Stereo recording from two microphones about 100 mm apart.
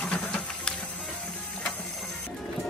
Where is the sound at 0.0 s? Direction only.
10° left (ahead or behind).